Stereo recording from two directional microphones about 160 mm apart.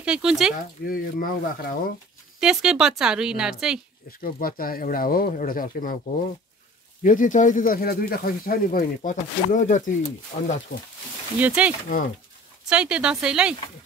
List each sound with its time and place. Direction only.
0.0 s a woman's voice: 5° right (ahead or behind)
0.8 s speech: 65° left (ahead or behind)
2.4 s a woman's voice: 5° right (ahead or behind)
4.2 s speech: 65° left (ahead or behind)
7.0 s speech: 55° left (ahead or behind)
11.3 s a woman's voice: 10° right (ahead or behind)